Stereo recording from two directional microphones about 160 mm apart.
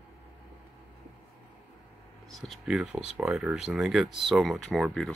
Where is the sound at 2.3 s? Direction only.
Centre (ahead or behind).